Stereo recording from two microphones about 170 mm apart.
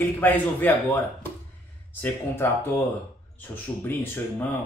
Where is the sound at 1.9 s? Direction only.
10° left (ahead or behind).